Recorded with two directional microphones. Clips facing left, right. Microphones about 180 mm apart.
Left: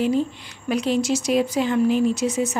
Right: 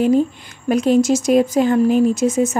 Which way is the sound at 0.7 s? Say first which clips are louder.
Right 7 dB; 45° right (ahead or behind).